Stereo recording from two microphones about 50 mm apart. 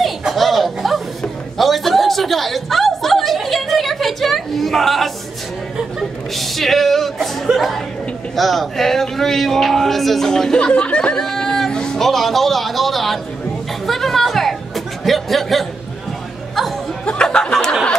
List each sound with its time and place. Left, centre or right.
0.3 s a sound: centre
6.3 s speech: centre; by 11.2 s left
11.2 s speech: centre
13.8 s chatter: centre
15.0 s speech: centre
17.0 s music: left